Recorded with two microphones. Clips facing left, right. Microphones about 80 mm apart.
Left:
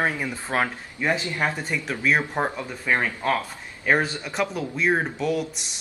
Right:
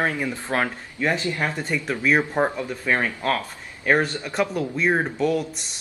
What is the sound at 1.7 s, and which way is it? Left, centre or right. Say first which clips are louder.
Speech: right 5 dB; centre.